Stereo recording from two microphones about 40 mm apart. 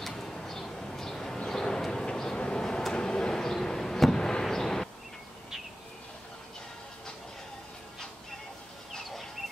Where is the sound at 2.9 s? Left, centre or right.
Centre.